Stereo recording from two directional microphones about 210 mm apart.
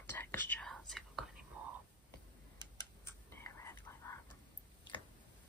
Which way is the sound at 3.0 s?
10° left (ahead or behind).